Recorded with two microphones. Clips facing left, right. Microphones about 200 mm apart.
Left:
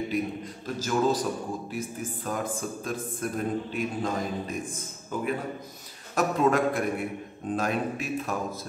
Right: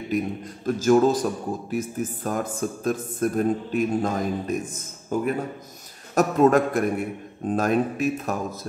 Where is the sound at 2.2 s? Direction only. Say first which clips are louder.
Right 3 dB; 45° right (ahead or behind).